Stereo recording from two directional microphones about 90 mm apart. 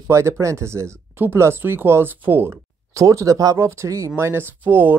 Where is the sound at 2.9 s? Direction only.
35° right (ahead or behind).